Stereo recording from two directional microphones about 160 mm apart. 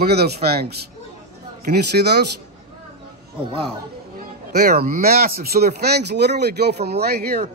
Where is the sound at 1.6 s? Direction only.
90° right.